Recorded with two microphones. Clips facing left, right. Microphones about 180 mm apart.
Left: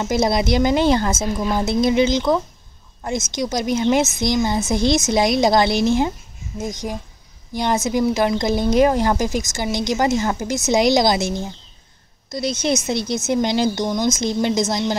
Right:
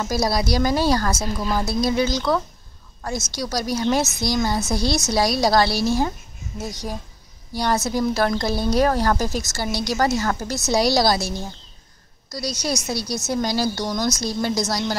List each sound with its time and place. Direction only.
0.0 s speech: 20° left (ahead or behind)